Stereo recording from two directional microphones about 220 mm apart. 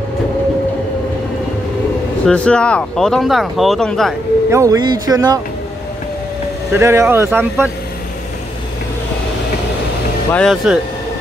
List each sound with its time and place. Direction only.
2.2 s speech: 5° left (ahead or behind)
4.5 s speech: 15° right (ahead or behind)
6.7 s speech: 10° right (ahead or behind)
10.3 s speech: centre (ahead or behind)